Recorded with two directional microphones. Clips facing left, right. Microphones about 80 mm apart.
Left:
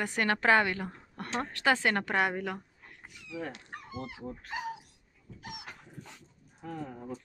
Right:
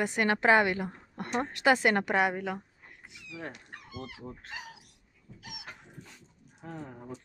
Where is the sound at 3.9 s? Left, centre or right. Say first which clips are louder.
Left 2 dB; left.